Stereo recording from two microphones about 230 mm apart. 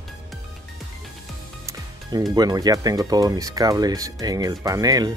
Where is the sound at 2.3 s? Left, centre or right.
Centre.